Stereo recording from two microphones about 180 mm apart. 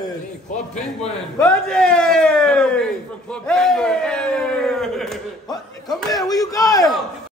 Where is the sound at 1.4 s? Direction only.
5° left (ahead or behind).